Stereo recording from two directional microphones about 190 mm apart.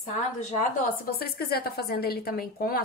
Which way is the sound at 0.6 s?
50° left (ahead or behind).